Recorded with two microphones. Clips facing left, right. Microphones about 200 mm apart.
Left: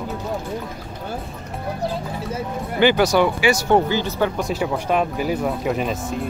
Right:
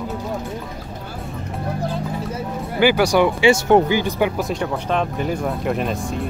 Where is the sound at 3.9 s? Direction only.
15° right (ahead or behind).